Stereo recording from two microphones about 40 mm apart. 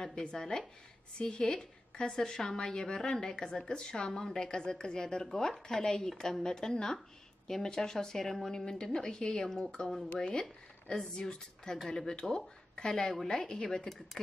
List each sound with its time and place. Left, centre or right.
0.0 s speech: centre
11.1 s speech: centre